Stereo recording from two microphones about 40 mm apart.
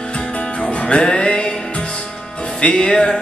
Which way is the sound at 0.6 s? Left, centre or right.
Left.